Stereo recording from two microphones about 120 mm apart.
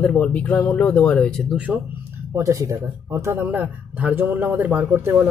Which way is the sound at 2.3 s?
25° right (ahead or behind).